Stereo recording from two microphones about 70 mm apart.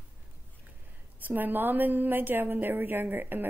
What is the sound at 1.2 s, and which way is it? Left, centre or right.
A woman's voice, right.